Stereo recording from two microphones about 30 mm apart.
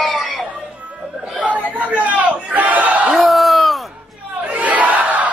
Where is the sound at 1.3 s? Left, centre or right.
Right.